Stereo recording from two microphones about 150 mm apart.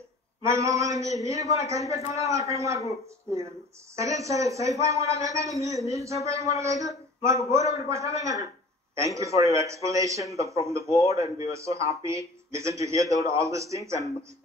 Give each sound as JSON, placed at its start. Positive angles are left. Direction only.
{"t": 0.4, "sound": "a man's voice", "side_deg": -20}
{"t": 3.9, "sound": "a man's voice", "side_deg": -20}